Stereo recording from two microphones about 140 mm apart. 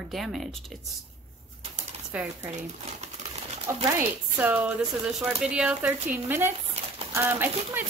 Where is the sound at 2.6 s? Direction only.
55° right (ahead or behind).